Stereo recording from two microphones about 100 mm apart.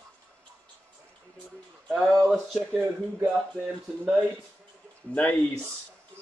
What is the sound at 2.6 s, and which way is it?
Speech, 10° right (ahead or behind).